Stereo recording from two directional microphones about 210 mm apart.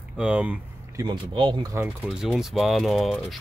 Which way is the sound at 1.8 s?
5° right (ahead or behind).